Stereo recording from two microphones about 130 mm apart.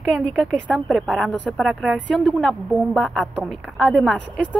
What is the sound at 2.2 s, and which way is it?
A woman's voice, 5° left (ahead or behind).